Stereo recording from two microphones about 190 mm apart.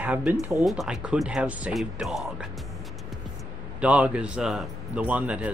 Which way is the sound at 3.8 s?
5° right (ahead or behind).